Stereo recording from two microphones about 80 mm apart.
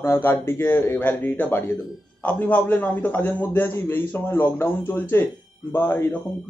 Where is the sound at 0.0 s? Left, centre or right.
Left.